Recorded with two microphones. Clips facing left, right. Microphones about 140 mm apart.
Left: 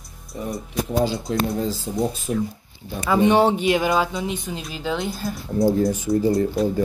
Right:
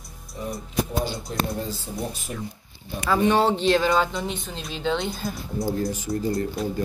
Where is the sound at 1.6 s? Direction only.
90° left.